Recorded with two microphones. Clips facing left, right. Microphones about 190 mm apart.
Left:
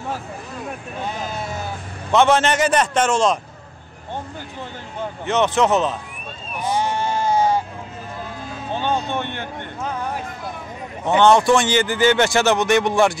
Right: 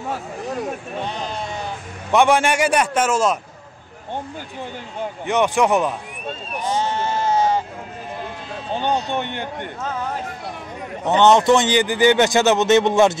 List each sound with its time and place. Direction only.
0.1 s speech: 75° right (ahead or behind)
1.0 s speech: 5° left (ahead or behind)
2.1 s a man's voice: 15° right (ahead or behind)
5.2 s a man's voice: 15° right (ahead or behind)
6.6 s sheep: 10° left (ahead or behind)
8.7 s a man's voice: 15° right (ahead or behind)
11.2 s speech: 20° right (ahead or behind)